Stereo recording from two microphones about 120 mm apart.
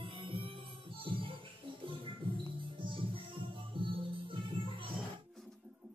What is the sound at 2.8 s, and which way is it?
Music, 45° right (ahead or behind).